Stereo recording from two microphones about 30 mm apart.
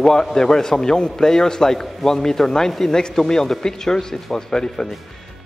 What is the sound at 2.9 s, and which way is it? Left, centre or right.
A man's voice, left.